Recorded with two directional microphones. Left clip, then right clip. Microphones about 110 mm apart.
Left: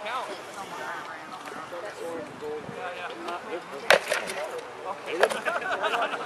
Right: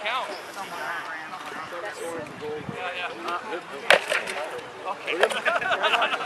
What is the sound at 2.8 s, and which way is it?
Speech, 25° right (ahead or behind).